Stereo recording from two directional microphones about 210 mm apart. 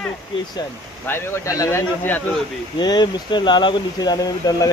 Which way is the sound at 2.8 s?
20° left (ahead or behind).